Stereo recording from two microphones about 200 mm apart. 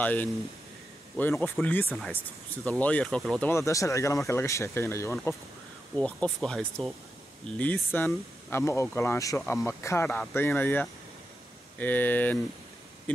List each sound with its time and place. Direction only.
0.0 s speech: 10° left (ahead or behind)
3.4 s speech: 15° left (ahead or behind)